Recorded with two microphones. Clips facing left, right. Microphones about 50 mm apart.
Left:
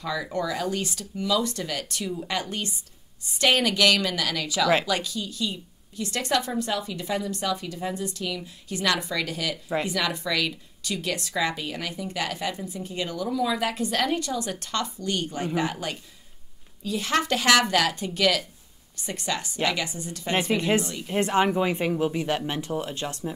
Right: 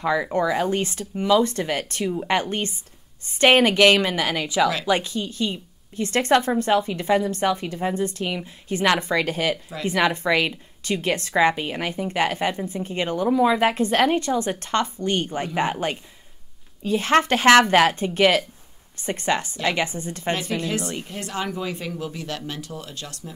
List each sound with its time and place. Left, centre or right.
0.0 s a woman's voice: right
20.3 s speech: left
20.8 s a woman's voice: right
21.1 s speech: left